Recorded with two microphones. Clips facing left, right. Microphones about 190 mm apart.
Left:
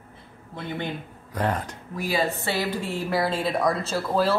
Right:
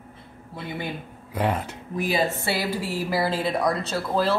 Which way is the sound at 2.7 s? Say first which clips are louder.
Even; 5° right (ahead or behind).